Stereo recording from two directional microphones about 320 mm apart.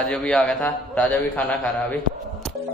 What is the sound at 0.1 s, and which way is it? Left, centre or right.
A woman's voice, centre.